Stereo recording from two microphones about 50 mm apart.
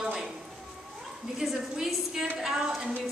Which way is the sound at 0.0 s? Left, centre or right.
Centre.